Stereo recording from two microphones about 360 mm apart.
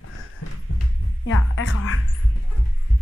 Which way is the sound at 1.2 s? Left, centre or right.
Left.